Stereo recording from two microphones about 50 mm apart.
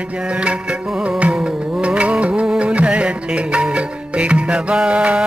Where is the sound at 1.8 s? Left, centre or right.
Right.